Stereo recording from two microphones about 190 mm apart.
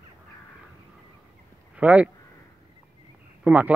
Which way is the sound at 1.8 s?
5° right (ahead or behind).